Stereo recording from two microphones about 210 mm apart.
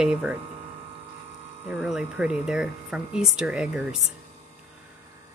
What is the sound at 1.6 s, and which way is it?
Speech, 5° right (ahead or behind).